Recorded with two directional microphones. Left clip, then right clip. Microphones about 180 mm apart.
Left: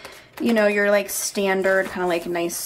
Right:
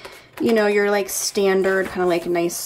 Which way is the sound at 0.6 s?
35° right (ahead or behind).